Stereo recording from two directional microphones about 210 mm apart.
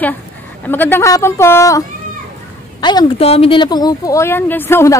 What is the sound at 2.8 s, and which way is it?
A woman's voice, 20° left (ahead or behind).